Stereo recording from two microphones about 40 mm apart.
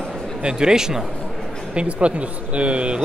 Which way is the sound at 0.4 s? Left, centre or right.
Right.